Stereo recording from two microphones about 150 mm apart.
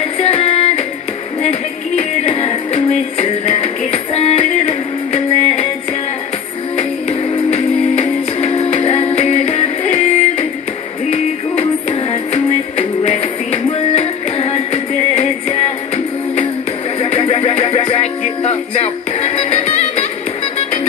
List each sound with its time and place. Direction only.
0.2 s music: 40° left (ahead or behind)
6.8 s music: 45° left (ahead or behind)
12.1 s music: 50° left (ahead or behind)
17.0 s music: 45° left (ahead or behind)